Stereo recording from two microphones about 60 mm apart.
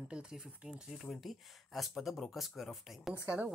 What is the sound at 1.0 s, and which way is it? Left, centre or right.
Speech, centre.